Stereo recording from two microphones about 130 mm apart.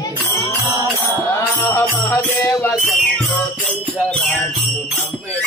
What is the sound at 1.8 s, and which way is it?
Music, 15° left (ahead or behind).